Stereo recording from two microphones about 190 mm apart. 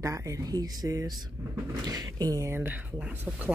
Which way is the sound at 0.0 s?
15° right (ahead or behind).